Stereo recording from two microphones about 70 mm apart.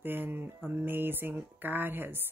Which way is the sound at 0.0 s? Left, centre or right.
Right.